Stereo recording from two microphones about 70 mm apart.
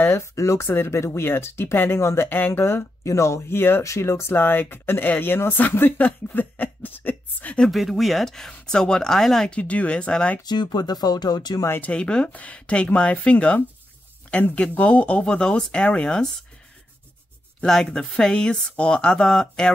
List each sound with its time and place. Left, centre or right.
0.0 s speech: left
2.2 s speech: left
3.8 s speech: left
7.7 s speech: centre
9.5 s speech: centre
10.4 s speech: left
11.8 s speech: centre
18.1 s speech: centre